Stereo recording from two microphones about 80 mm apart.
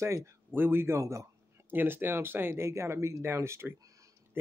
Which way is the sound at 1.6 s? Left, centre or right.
Right.